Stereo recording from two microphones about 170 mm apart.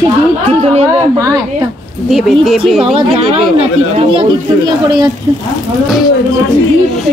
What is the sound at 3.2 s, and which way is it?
Speech, 35° right (ahead or behind).